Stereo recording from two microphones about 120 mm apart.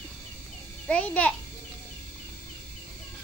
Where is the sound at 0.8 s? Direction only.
10° left (ahead or behind).